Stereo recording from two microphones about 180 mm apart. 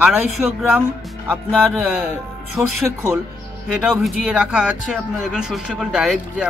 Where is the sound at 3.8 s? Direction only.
5° right (ahead or behind).